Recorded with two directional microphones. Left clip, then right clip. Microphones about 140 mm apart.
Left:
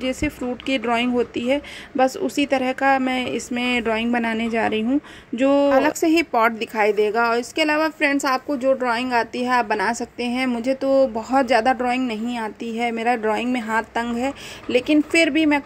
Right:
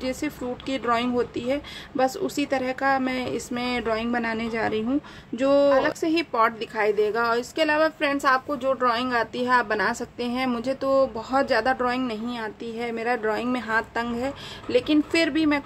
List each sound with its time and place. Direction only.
0.0 s speech: 20° left (ahead or behind)